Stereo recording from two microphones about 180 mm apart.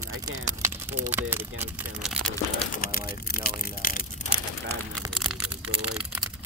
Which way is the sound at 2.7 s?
55° left (ahead or behind).